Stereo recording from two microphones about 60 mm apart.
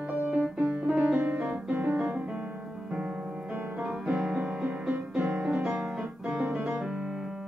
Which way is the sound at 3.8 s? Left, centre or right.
Centre.